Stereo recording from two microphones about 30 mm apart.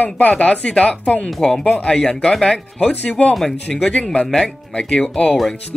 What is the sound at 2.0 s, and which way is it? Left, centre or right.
Speech, left.